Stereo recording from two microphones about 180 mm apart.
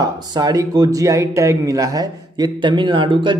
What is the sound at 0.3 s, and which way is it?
Speech, 20° right (ahead or behind).